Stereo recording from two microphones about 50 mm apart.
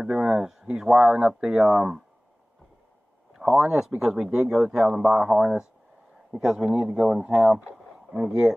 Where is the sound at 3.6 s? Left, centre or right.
Centre.